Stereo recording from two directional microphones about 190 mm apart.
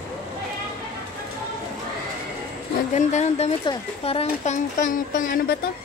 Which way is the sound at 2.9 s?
35° left (ahead or behind).